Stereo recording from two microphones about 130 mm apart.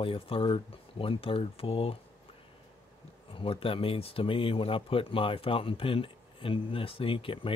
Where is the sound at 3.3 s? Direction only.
45° left (ahead or behind).